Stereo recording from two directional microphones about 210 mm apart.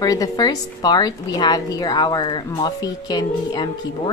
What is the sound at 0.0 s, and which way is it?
A woman's voice, 15° left (ahead or behind).